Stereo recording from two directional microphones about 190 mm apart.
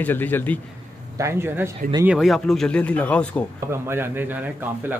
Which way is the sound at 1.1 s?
15° right (ahead or behind).